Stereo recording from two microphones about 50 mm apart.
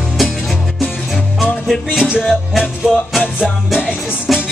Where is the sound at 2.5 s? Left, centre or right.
Centre.